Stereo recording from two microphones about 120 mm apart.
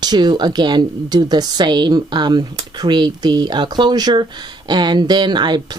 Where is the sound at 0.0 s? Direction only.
35° right (ahead or behind).